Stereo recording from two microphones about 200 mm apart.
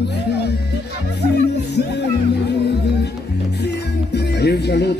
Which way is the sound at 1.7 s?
55° left (ahead or behind).